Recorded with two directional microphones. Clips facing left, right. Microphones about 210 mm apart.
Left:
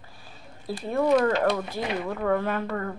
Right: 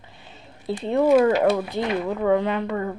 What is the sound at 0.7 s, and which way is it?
Speech, 20° right (ahead or behind).